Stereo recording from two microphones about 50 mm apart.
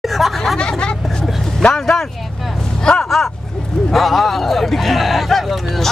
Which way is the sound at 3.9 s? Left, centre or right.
Centre.